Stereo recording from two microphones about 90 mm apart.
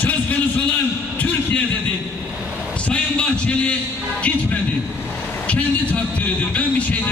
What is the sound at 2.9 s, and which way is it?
A man's voice, 10° left (ahead or behind).